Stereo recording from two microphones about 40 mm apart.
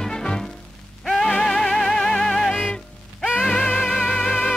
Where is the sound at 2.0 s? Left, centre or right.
Left.